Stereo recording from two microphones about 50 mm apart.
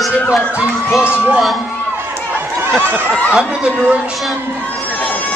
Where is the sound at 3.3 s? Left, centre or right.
Centre.